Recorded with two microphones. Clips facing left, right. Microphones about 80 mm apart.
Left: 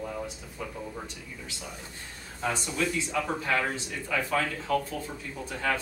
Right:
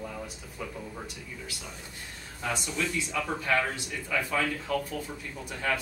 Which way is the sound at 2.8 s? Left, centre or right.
Centre.